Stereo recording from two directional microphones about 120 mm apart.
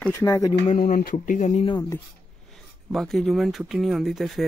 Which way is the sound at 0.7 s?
85° left.